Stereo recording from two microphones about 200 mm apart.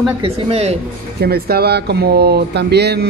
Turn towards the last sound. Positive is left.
turn(degrees=-55)  # may be behind; listen again after turning